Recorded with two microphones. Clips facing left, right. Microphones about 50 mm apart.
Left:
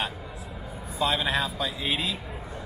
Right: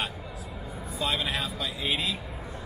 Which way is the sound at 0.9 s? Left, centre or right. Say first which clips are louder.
Left 4 dB; centre.